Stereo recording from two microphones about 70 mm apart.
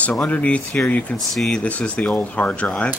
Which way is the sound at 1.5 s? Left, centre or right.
Centre.